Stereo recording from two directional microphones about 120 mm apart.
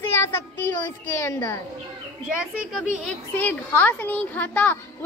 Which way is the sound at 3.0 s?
15° left (ahead or behind).